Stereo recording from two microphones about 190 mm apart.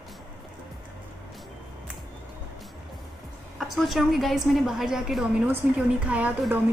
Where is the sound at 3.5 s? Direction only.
Centre (ahead or behind).